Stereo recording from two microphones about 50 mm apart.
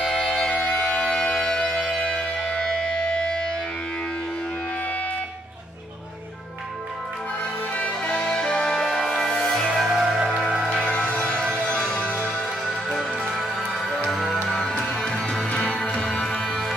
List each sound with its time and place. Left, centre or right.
0.0 s music: centre
7.7 s music: left; by 10.2 s centre
10.7 s music: centre
12.4 s music: centre
14.5 s music: centre